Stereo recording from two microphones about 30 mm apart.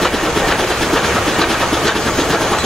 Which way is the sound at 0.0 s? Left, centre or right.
Centre.